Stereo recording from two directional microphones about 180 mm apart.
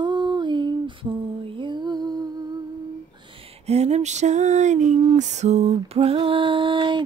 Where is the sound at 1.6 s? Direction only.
25° right (ahead or behind).